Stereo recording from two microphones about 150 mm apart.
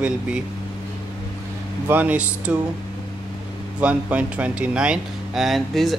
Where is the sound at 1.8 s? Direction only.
10° right (ahead or behind).